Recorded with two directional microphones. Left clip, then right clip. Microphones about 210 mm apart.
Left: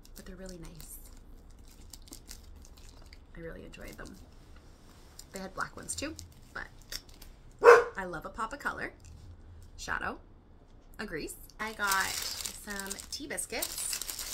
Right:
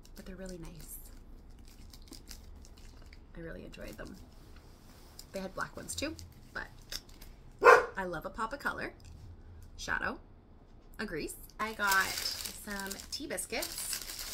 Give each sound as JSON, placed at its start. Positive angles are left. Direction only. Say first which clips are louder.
{"t": 0.2, "sound": "a woman's voice", "louder": "right 1 dB", "side_deg": 0}
{"t": 1.9, "sound": "a sound", "louder": "left 1 dB", "side_deg": 15}
{"t": 3.3, "sound": "speech", "louder": "left 1 dB", "side_deg": 0}
{"t": 5.1, "sound": "speech", "louder": "even", "side_deg": 0}
{"t": 6.5, "sound": "dog", "louder": "even", "side_deg": 0}
{"t": 9.8, "sound": "speech", "louder": "even", "side_deg": 5}